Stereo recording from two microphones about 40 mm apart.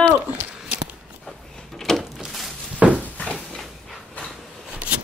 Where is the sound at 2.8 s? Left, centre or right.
Right.